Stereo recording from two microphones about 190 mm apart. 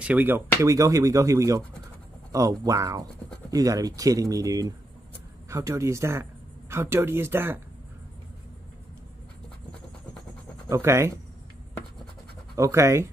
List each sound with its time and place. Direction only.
0.0 s speech: 10° right (ahead or behind)
10.7 s speech: 15° right (ahead or behind)
12.5 s speech: 15° right (ahead or behind)